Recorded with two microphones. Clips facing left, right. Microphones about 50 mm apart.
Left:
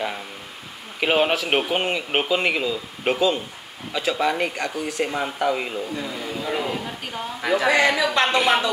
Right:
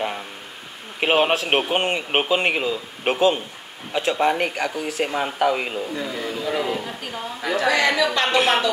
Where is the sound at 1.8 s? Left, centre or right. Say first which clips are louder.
Right 1 dB; centre.